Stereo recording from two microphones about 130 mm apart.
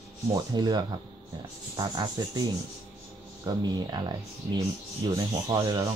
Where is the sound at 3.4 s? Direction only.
30° right (ahead or behind).